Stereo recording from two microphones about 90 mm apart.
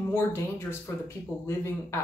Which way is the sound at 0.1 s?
25° left (ahead or behind).